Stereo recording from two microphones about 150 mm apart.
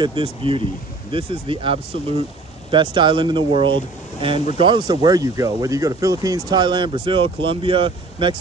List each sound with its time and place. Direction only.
0.0 s speech: 35° right (ahead or behind)